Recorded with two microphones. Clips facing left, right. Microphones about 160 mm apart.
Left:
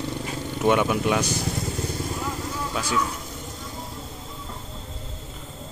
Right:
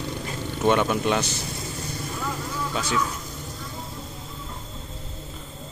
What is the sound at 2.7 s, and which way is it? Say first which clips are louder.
Speech: even; 10° left (ahead or behind).